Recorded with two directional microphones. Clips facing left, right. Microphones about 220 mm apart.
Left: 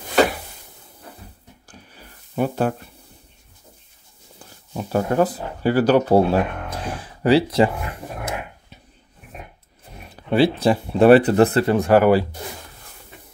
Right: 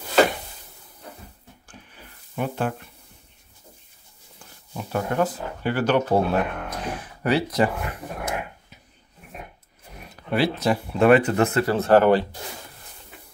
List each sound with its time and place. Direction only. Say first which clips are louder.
2.3 s speech: left 5 dB; 40° left (ahead or behind)
4.7 s speech: left 5 dB; 35° left (ahead or behind)
10.3 s speech: left 5 dB; 30° left (ahead or behind)
11.6 s speech: left 2 dB; 15° left (ahead or behind)